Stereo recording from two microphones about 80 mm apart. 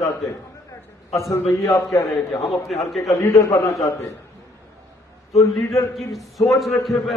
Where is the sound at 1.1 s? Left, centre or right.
Left.